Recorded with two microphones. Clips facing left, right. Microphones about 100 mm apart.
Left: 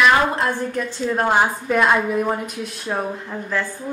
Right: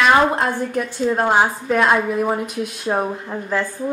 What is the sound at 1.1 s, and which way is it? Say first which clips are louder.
A woman's voice: even; 5° right (ahead or behind).